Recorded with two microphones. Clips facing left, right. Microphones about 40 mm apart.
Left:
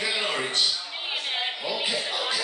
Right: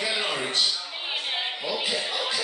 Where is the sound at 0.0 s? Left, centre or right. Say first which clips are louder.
Even; centre.